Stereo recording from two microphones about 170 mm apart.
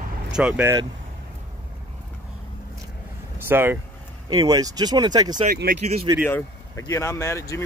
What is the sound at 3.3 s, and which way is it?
Speech, 15° right (ahead or behind).